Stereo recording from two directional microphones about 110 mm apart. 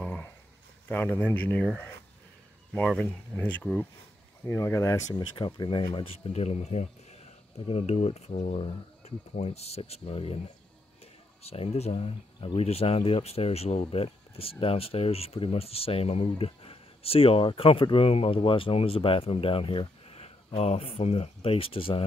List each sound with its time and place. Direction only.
0.0 s a sound: 10° left (ahead or behind)
0.8 s speech: 15° left (ahead or behind)
3.3 s speech: 15° left (ahead or behind)
5.3 s speech: 45° left (ahead or behind)
6.3 s speech: 85° left
7.6 s speech: 70° left (ahead or behind)
11.4 s speech: 70° left (ahead or behind); by 12.6 s 50° left (ahead or behind)
12.6 s speech: 65° left (ahead or behind)